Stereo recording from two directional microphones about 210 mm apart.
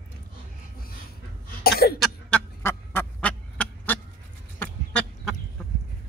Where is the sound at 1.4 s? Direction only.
45° left (ahead or behind).